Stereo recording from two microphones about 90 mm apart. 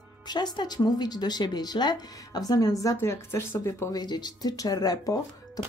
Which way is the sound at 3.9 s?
50° left (ahead or behind).